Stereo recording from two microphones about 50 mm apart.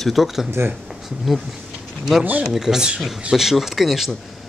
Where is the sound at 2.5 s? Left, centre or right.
Centre.